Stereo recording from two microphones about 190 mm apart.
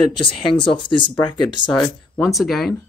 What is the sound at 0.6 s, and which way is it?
Speech, 25° left (ahead or behind).